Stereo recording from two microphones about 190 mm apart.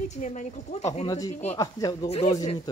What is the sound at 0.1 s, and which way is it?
Speech, 40° left (ahead or behind).